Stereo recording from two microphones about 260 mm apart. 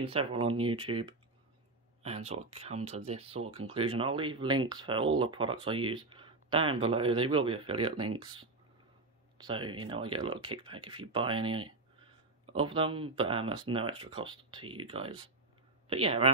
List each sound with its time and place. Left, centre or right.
0.0 s speech: right
2.0 s speech: right